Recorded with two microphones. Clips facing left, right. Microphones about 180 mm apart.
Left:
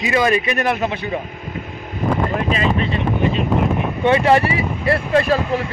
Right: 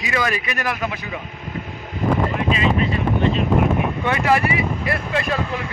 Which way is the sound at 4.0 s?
30° left (ahead or behind).